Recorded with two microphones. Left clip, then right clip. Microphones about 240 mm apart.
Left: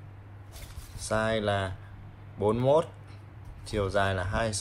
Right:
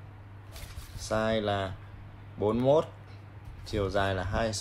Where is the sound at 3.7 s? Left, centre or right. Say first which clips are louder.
Left 1 dB; left.